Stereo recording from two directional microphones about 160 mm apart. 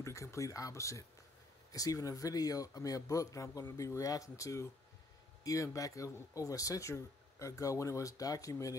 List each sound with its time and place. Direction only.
0.0 s speech: 20° left (ahead or behind)